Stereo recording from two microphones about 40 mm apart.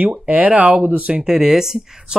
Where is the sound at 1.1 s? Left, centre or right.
Right.